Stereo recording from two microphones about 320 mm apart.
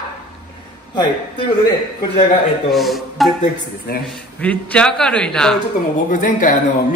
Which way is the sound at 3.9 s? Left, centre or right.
Left.